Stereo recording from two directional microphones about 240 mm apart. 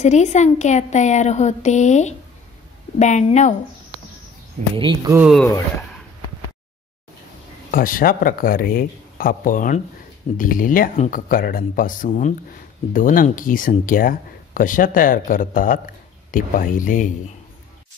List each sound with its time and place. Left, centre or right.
0.0 s a woman's voice: left
4.7 s speech: centre
5.3 s speech: centre
7.7 s speech: left